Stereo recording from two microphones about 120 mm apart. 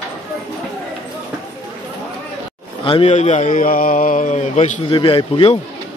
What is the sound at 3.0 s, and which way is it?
Speech, 80° left.